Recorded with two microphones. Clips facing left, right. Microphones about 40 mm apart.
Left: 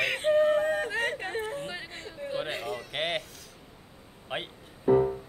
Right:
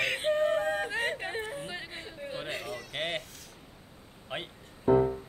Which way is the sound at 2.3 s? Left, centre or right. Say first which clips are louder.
Left 5 dB; centre.